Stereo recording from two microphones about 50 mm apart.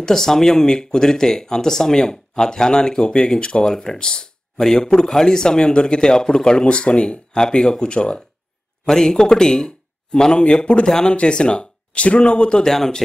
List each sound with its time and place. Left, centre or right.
0.0 s speech: centre
10.9 s speech: centre
12.7 s speech: centre